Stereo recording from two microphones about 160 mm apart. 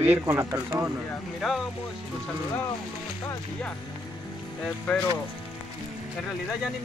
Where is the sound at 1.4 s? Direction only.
Centre (ahead or behind).